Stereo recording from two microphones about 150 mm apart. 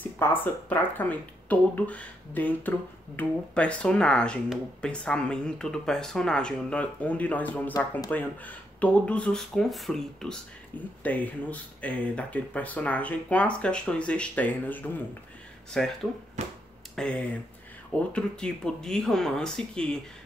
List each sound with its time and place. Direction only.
0.0 s speech: 15° left (ahead or behind)
16.4 s speech: 45° right (ahead or behind)
16.9 s speech: 5° left (ahead or behind)